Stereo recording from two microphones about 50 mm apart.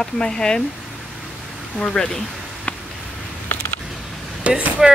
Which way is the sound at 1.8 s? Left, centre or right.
Centre.